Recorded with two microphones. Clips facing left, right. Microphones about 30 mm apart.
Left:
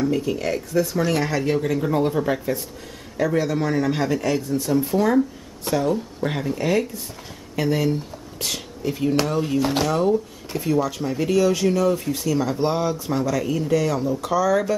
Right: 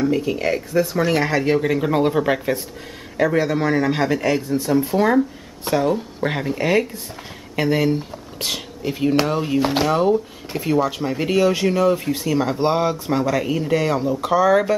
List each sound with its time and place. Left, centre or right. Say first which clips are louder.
0.0 s speech: right 3 dB; centre
4.6 s speech: right 2 dB; centre
4.9 s speech: right 1 dB; right